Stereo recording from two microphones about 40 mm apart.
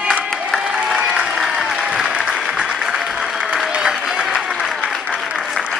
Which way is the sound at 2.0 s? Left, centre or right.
Right.